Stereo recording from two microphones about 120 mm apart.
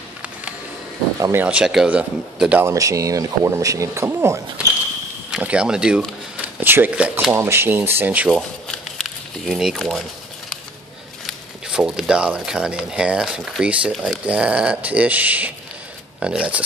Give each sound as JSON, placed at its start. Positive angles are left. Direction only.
{"t": 1.3, "sound": "speech", "side_deg": -10}
{"t": 2.6, "sound": "speech", "side_deg": -25}
{"t": 5.3, "sound": "speech", "side_deg": -10}
{"t": 8.9, "sound": "speech", "side_deg": 0}
{"t": 11.2, "sound": "speech", "side_deg": -5}